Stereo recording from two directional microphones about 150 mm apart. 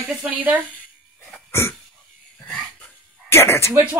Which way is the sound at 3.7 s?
10° right (ahead or behind).